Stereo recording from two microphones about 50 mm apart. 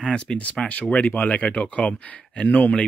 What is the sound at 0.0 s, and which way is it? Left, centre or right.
Speech, centre.